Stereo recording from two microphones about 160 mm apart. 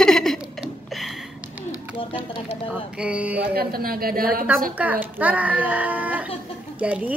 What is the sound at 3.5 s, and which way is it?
Speech, 70° right (ahead or behind).